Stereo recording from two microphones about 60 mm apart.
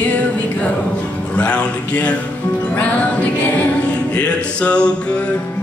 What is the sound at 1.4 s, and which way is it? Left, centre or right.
Music, left.